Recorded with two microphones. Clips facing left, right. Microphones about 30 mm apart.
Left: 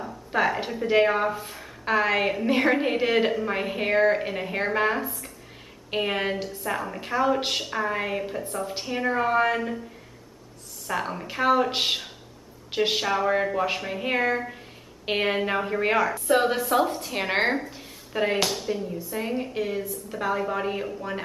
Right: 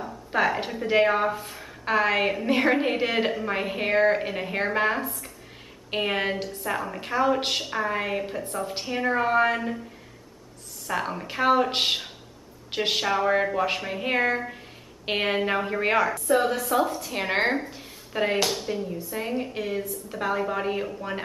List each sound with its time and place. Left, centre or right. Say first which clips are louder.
0.0 s speech: even; centre
10.9 s speech: even; centre
16.3 s a woman's voice: left 3 dB; left
16.6 s a woman's voice: left 1 dB; centre